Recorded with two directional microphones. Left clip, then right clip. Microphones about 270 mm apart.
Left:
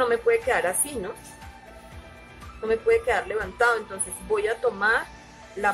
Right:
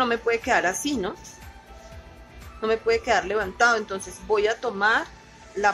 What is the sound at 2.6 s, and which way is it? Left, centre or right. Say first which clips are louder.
Speech: even; right.